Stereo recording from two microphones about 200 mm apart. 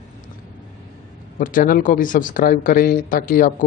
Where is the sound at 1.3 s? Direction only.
45° left (ahead or behind).